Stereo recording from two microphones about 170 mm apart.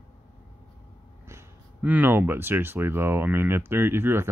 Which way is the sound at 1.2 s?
10° right (ahead or behind).